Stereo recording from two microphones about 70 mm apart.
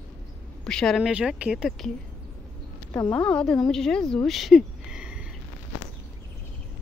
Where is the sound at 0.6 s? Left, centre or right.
Centre.